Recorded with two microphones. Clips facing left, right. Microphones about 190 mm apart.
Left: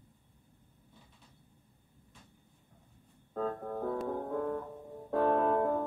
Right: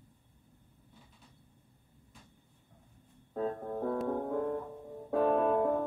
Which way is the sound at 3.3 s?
Centre (ahead or behind).